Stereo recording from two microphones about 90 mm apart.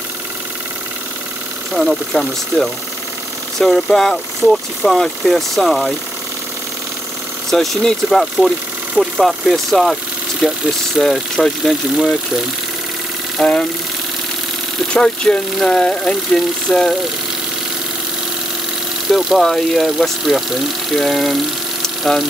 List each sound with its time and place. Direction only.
1.7 s speech: centre (ahead or behind)
7.5 s speech: 5° left (ahead or behind)
8.5 s engine: 10° right (ahead or behind)
9.2 s speech: centre (ahead or behind)
13.4 s speech: 10° left (ahead or behind)
14.9 s speech: 10° left (ahead or behind)
19.0 s speech: centre (ahead or behind)
21.8 s engine: 5° left (ahead or behind)